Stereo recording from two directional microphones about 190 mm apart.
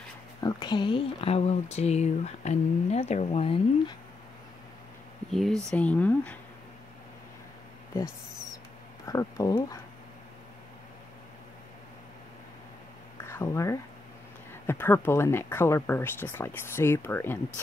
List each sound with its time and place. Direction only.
0.4 s speech: 20° left (ahead or behind)
5.3 s speech: centre (ahead or behind)
9.0 s speech: 20° left (ahead or behind)
13.2 s speech: 15° left (ahead or behind)